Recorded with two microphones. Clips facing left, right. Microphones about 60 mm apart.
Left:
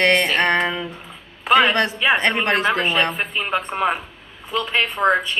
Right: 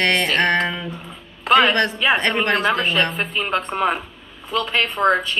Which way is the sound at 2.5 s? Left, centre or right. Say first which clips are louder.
Even; centre.